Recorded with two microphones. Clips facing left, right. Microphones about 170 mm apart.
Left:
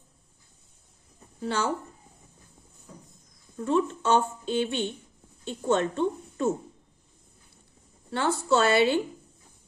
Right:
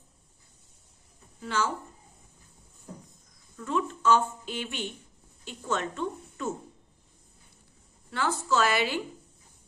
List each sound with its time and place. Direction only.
1.4 s speech: 30° left (ahead or behind)
3.5 s a woman's voice: 30° left (ahead or behind)
8.1 s a woman's voice: 30° left (ahead or behind)